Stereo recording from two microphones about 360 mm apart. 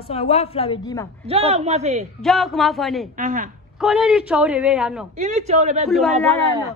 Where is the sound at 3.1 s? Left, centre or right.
Right.